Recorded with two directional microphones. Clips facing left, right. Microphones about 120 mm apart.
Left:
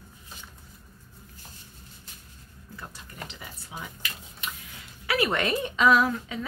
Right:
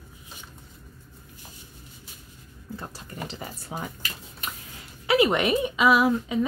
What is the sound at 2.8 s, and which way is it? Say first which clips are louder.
Speech: right 3 dB; 35° right (ahead or behind).